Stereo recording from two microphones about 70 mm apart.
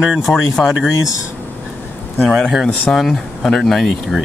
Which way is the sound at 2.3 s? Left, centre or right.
Centre.